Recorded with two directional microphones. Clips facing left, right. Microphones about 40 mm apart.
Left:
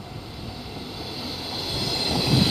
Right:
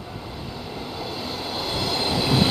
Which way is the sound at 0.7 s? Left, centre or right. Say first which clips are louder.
Right 4 dB; centre.